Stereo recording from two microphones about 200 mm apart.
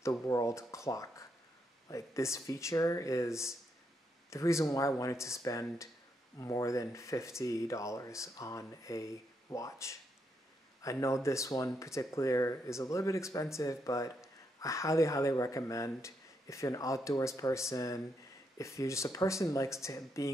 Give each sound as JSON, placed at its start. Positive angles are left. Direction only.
{"t": 0.0, "sound": "a man's voice", "side_deg": 15}